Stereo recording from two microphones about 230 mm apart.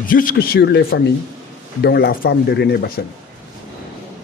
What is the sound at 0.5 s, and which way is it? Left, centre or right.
Speech, left.